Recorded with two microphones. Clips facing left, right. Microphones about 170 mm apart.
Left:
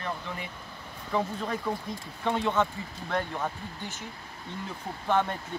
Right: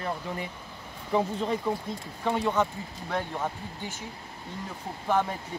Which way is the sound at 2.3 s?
10° right (ahead or behind).